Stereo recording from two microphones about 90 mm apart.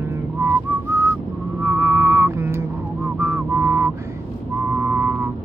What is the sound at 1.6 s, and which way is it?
Vehicle, 25° right (ahead or behind).